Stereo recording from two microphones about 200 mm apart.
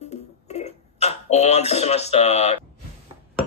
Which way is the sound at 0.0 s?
35° left (ahead or behind).